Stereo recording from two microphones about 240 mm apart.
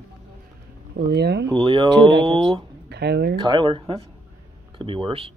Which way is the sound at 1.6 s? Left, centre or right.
Right.